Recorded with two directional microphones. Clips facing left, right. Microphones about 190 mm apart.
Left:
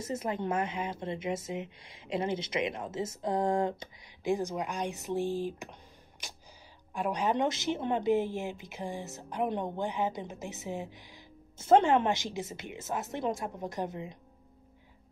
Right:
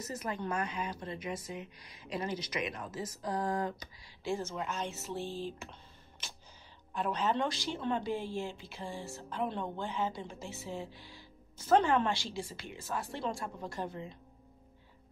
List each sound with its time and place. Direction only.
0.0 s a woman's voice: 25° left (ahead or behind)
6.9 s a woman's voice: 10° left (ahead or behind)